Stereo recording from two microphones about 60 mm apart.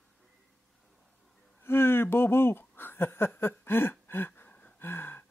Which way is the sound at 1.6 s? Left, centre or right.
Left.